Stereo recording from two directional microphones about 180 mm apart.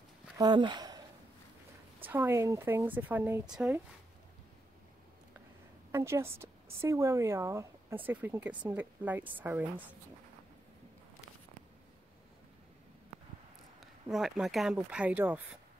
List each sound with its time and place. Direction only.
0.4 s speech: 25° right (ahead or behind)
2.0 s a woman's voice: 10° right (ahead or behind)
5.9 s a woman's voice: 15° right (ahead or behind)
13.7 s speech: centre (ahead or behind)